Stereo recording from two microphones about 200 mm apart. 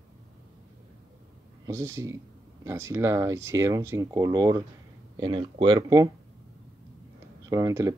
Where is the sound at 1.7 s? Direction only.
15° right (ahead or behind).